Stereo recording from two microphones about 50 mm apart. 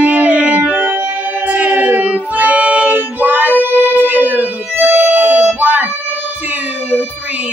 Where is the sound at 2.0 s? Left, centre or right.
Right.